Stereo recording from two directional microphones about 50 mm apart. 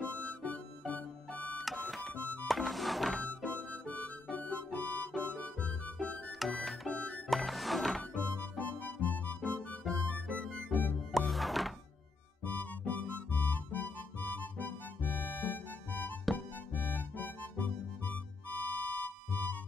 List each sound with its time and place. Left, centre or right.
0.0 s music: left
1.6 s music: centre
2.1 s music: left
2.4 s music: centre
3.3 s harmonica: left
5.2 s music: left
6.4 s music: centre
6.9 s music: left
7.2 s music: centre
8.4 s music: left
9.4 s music: left
11.1 s music: centre
12.4 s music: left